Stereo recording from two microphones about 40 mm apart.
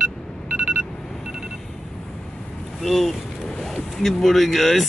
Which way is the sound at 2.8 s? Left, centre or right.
Centre.